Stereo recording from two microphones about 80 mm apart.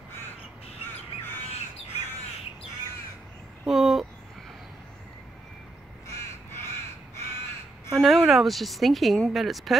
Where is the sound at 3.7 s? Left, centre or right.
Centre.